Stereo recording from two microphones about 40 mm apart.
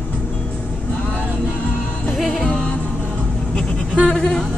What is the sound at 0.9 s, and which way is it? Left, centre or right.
Vehicle, left.